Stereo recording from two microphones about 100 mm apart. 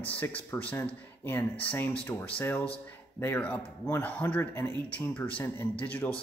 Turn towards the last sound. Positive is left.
turn(degrees=15)  # may be behind; listen again after turning